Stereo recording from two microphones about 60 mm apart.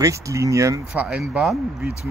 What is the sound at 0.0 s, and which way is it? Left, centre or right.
Speech, right.